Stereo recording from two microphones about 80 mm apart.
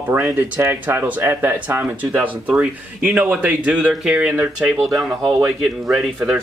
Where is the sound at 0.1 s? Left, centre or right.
Right.